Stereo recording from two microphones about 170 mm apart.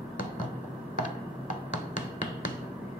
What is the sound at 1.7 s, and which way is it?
Hammer, 50° left (ahead or behind).